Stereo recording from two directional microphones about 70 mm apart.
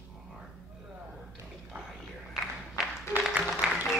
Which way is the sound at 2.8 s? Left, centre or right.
Centre.